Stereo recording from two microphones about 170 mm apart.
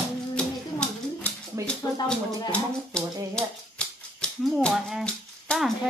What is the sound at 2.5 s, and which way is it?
Speech, 5° left (ahead or behind).